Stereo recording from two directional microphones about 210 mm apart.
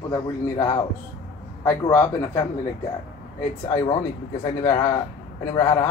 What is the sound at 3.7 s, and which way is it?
Speech, 15° left (ahead or behind).